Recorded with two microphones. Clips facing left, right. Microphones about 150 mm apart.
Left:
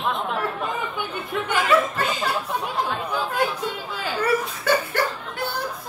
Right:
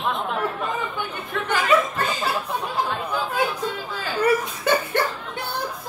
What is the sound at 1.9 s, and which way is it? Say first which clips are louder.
Chatter: even; 5° right (ahead or behind).